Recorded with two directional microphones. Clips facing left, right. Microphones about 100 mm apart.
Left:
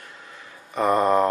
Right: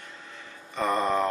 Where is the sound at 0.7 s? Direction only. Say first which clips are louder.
Left 6 dB; 15° left (ahead or behind).